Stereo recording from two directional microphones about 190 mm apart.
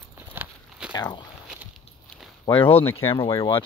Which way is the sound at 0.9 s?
20° left (ahead or behind).